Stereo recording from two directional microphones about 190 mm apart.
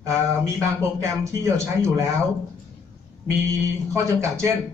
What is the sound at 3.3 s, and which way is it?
Speech, 15° right (ahead or behind).